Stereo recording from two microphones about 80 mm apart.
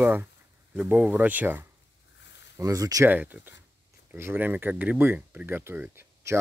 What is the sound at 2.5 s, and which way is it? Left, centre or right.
Speech, right.